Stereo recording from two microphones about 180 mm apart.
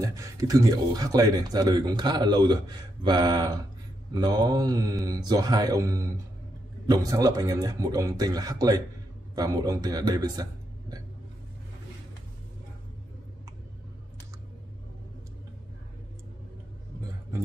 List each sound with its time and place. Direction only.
0.0 s a man's voice: 15° right (ahead or behind)